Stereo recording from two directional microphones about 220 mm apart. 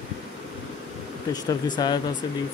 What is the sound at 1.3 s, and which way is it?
Speech, 20° left (ahead or behind).